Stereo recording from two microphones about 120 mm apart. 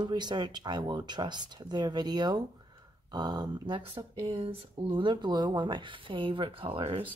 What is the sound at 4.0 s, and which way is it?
Speech, 45° right (ahead or behind).